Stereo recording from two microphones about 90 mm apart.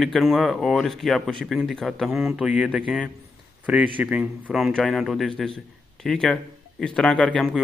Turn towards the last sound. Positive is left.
turn(degrees=5)  # may be behind; listen again after turning